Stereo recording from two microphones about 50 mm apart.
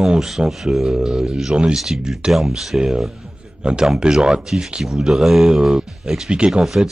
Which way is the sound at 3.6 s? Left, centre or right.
Centre.